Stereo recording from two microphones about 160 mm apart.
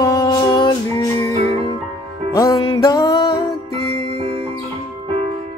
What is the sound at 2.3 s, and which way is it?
Music, 20° left (ahead or behind).